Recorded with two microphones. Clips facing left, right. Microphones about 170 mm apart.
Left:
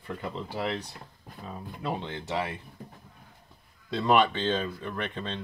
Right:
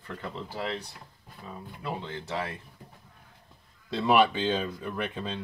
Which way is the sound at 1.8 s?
25° left (ahead or behind).